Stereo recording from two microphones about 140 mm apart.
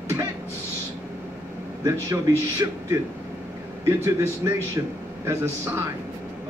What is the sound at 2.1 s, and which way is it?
Speech, 20° right (ahead or behind).